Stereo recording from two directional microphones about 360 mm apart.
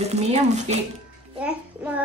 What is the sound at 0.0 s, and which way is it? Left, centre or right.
Speech, centre.